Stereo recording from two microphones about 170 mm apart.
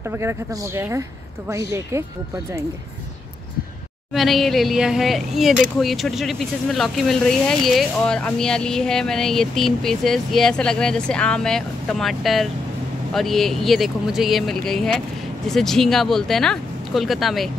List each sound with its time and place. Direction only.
0.0 s speech: 15° right (ahead or behind)
4.1 s speech: centre (ahead or behind)